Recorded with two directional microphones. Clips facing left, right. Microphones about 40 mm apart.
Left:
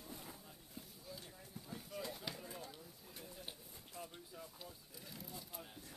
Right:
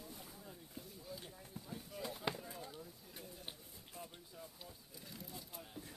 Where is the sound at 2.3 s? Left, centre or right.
Right.